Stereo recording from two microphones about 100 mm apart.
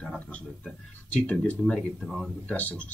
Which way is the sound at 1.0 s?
15° left (ahead or behind).